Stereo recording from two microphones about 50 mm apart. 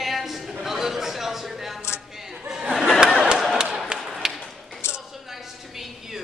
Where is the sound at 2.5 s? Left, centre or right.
Centre.